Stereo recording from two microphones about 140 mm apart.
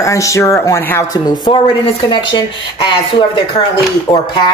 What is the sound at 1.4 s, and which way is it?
Speech, 35° left (ahead or behind).